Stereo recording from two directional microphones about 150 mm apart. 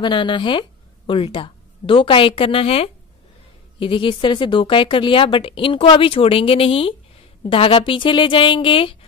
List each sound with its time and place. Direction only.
0.0 s a woman's voice: 30° left (ahead or behind)